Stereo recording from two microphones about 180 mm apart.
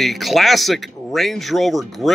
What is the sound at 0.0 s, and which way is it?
Speech, centre (ahead or behind).